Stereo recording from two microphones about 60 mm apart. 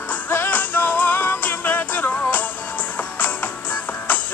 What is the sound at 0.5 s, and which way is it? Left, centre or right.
Music, left.